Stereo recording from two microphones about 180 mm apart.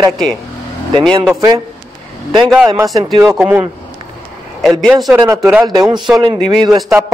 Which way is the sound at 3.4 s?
10° right (ahead or behind).